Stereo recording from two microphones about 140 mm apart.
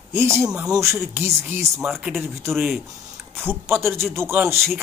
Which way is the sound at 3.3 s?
15° right (ahead or behind).